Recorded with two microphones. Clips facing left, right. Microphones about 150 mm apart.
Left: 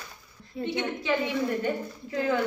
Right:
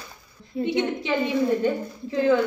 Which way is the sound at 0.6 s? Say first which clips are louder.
Right 6 dB; 20° right (ahead or behind).